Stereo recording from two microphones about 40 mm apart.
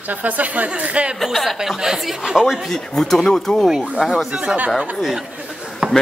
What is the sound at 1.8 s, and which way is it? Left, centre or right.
Speech, centre.